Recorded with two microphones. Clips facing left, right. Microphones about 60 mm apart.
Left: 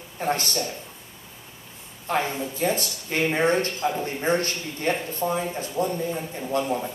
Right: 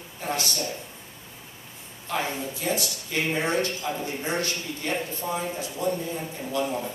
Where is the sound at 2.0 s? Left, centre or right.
Left.